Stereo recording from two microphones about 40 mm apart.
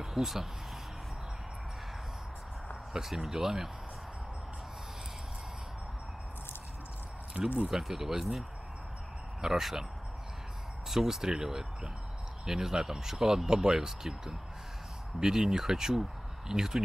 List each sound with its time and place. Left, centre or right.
0.0 s speech: centre
2.9 s speech: centre
7.3 s speech: right
7.6 s speech: centre
10.9 s speech: centre